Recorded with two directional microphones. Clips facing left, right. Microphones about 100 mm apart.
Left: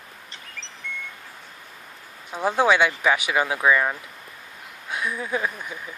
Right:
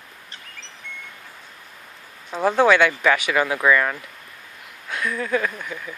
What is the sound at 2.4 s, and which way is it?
Speech, 10° left (ahead or behind).